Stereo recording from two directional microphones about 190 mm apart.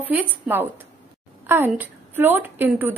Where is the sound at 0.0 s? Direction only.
10° right (ahead or behind).